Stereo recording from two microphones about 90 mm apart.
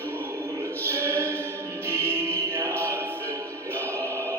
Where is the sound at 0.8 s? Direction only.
30° right (ahead or behind).